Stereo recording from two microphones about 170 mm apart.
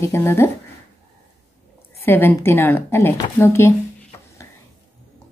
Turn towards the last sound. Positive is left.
turn(degrees=15)  # may be behind; listen again after turning